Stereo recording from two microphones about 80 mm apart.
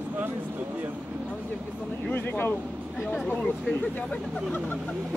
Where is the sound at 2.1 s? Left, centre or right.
Left.